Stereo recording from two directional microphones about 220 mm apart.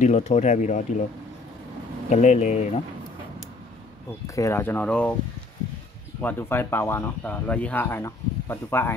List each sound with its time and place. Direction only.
0.0 s speech: 30° left (ahead or behind)
2.0 s speech: 30° left (ahead or behind)
4.4 s speech: 10° left (ahead or behind)
6.2 s speech: 10° left (ahead or behind)